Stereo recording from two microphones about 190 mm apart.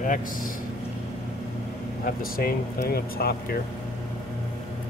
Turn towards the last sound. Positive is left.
turn(degrees=55)  # may be behind; listen again after turning